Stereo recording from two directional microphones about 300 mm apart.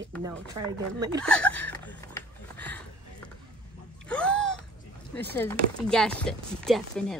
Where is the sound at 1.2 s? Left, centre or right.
Centre.